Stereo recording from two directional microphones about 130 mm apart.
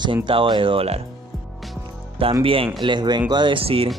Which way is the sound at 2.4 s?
45° right (ahead or behind).